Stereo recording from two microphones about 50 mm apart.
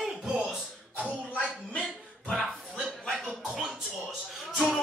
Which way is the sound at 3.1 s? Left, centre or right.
Centre.